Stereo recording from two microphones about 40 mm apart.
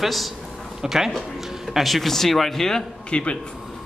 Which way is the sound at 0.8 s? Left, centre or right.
Centre.